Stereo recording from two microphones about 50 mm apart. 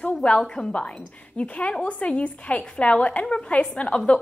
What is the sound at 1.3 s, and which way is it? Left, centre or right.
A woman's voice, left.